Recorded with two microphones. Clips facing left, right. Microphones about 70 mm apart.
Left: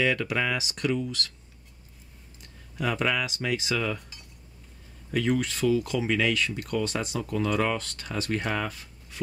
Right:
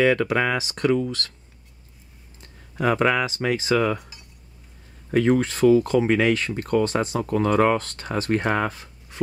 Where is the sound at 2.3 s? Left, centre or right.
Right.